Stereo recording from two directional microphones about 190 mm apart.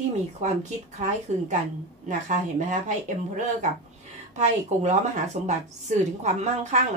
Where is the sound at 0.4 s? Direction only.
35° right (ahead or behind).